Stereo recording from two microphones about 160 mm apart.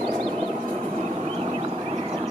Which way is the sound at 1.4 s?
40° right (ahead or behind).